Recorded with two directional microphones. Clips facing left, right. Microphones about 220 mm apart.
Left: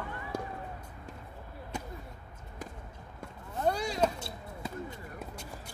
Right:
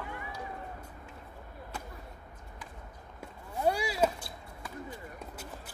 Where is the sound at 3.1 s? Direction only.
10° right (ahead or behind).